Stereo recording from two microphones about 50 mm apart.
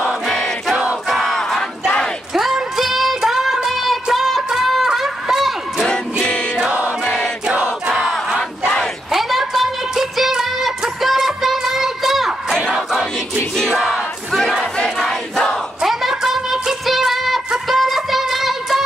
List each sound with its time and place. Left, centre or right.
0.0 s choir: centre
1.0 s battle cry: centre
2.3 s music: centre
6.2 s choir: centre
7.9 s a sound: centre
9.1 s music: centre
13.8 s battle cry: centre
15.0 s crowd: centre
15.8 s a sound: centre
17.5 s music: centre